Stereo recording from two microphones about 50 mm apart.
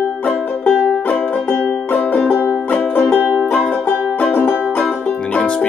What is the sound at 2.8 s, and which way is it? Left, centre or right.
Music, left.